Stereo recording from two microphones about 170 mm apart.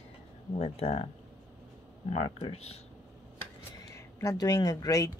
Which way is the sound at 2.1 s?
40° left (ahead or behind).